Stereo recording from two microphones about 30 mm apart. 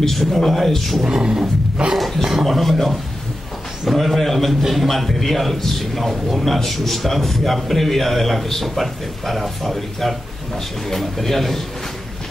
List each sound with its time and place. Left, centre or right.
0.1 s a man's voice: centre
1.0 s speech: right
1.8 s a sound: right
2.4 s a man's voice: centre